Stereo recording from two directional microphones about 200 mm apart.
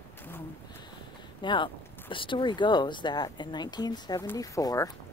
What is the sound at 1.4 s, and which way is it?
Speech, 25° left (ahead or behind).